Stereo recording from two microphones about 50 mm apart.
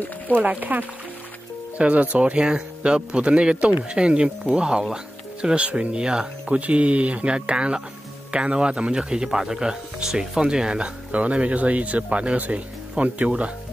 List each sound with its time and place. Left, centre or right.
0.4 s speech: right